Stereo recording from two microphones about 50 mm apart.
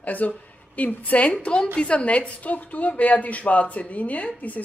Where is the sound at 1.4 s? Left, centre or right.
Left.